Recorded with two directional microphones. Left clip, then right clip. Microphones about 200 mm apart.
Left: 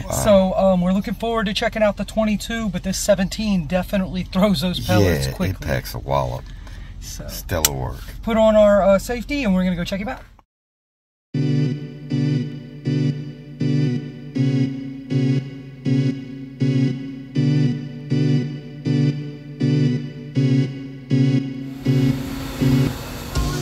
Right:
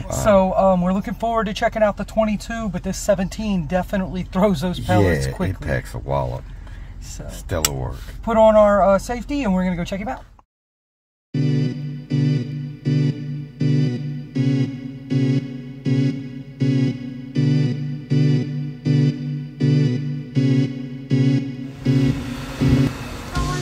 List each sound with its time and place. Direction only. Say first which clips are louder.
0.1 s speech: even; centre (ahead or behind)
7.4 s speech: left 1 dB; centre (ahead or behind)
11.3 s music: even; centre (ahead or behind)